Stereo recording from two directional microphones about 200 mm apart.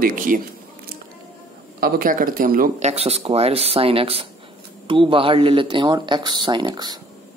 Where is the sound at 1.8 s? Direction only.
45° right (ahead or behind); by 7.0 s 20° right (ahead or behind).